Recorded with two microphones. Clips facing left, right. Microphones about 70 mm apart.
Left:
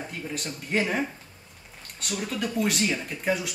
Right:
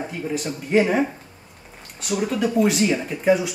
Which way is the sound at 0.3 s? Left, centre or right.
Centre.